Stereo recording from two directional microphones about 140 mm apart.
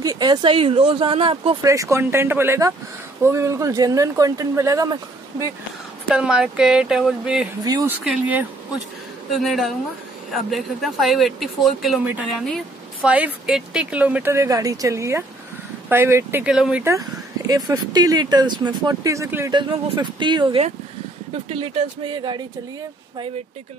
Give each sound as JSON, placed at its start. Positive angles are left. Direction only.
{"t": 0.0, "sound": "speech", "side_deg": -30}
{"t": 1.6, "sound": "speech", "side_deg": -25}
{"t": 6.1, "sound": "speech", "side_deg": -5}
{"t": 7.6, "sound": "speech", "side_deg": -25}
{"t": 8.0, "sound": "speech", "side_deg": -10}
{"t": 12.0, "sound": "speech", "side_deg": -10}
{"t": 12.4, "sound": "a sound", "side_deg": 0}
{"t": 13.1, "sound": "speech", "side_deg": -5}
{"t": 16.8, "sound": "speech", "side_deg": -25}
{"t": 19.5, "sound": "speech", "side_deg": -35}